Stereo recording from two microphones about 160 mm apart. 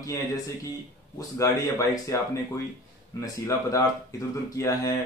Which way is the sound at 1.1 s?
20° left (ahead or behind).